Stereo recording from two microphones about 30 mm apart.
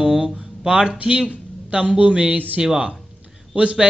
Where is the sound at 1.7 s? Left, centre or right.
Right.